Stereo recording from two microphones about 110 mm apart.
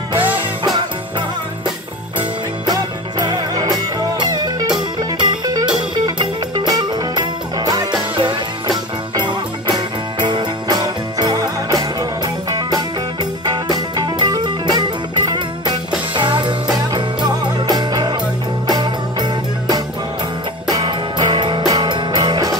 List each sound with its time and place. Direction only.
0.2 s music: 15° right (ahead or behind)
2.1 s music: 40° right (ahead or behind)
20.7 s music: 40° right (ahead or behind)